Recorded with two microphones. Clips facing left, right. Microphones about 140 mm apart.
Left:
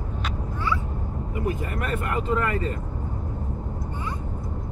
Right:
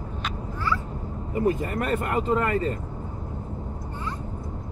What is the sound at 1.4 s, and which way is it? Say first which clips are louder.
Speech: right 5 dB; 35° right (ahead or behind).